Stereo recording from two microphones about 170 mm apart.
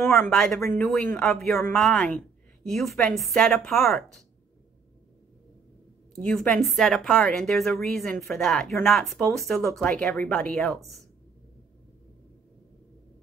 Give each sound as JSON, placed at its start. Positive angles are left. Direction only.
{"t": 0.2, "sound": "a woman's voice", "side_deg": 0}
{"t": 6.2, "sound": "a woman's voice", "side_deg": 5}